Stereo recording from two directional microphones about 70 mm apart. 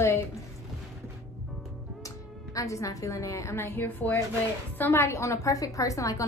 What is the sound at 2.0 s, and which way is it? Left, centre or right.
A woman's voice, left.